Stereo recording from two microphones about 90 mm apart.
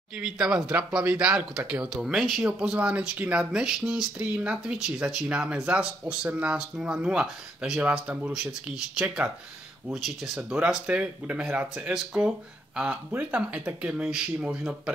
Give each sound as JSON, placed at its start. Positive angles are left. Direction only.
{"t": 0.2, "sound": "speech", "side_deg": -5}
{"t": 9.0, "sound": "speech", "side_deg": -15}
{"t": 9.9, "sound": "speech", "side_deg": -5}